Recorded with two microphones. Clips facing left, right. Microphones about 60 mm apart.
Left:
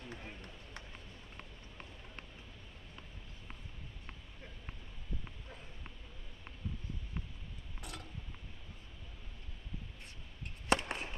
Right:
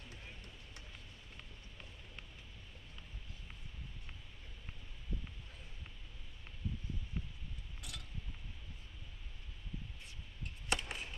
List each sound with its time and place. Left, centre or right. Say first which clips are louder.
0.1 s vehicle: left 5 dB; left
7.8 s mechanisms: left 4 dB; left
10.7 s chop: left 7 dB; left